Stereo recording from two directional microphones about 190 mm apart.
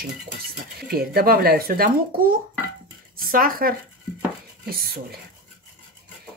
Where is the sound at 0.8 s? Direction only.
55° right (ahead or behind).